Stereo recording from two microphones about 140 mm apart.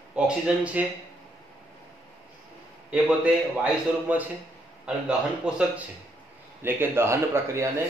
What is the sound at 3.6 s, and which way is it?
Speech, 10° right (ahead or behind).